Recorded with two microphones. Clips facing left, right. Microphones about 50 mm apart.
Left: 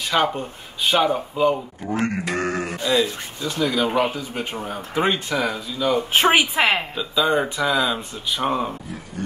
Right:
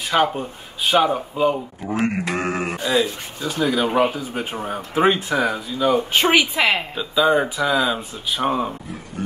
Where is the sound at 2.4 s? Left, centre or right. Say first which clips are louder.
Left 1 dB; centre.